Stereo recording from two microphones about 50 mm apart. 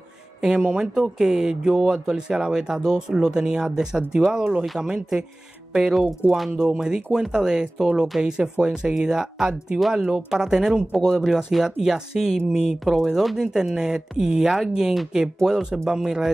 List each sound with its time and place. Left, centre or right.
0.4 s speech: centre
12.8 s speech: centre
13.4 s speech: centre